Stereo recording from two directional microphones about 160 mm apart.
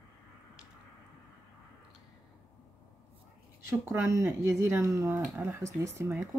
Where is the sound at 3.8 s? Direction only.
15° right (ahead or behind).